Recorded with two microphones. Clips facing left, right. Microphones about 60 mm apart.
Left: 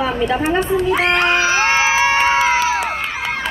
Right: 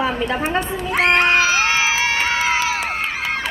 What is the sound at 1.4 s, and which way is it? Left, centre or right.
Crowd, left.